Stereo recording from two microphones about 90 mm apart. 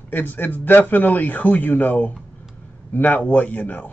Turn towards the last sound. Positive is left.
turn(degrees=15)  # may be behind; listen again after turning